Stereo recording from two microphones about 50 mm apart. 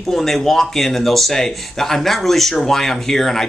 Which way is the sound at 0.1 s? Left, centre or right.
Centre.